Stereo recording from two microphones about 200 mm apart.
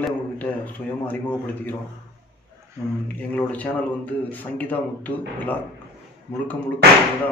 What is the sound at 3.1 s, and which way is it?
A man's voice, 10° left (ahead or behind).